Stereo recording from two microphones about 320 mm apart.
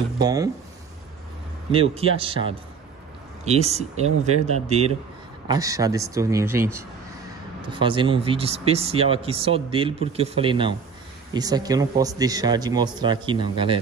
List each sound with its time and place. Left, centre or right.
0.2 s speech: centre
1.7 s speech: centre